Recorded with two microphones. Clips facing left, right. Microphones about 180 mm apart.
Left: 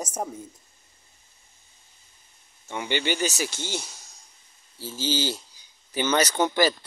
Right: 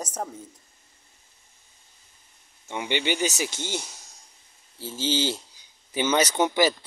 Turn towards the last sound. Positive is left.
turn(degrees=-15)  # may be behind; listen again after turning